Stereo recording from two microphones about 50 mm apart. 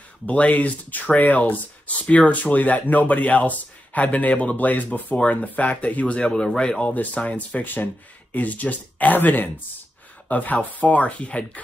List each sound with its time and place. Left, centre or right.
0.3 s speech: left
7.2 s speech: left